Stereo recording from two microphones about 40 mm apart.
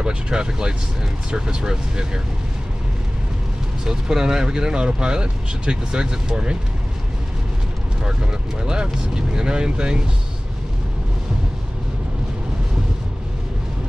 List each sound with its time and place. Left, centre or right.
0.0 s speech: right
3.8 s speech: centre
8.0 s speech: right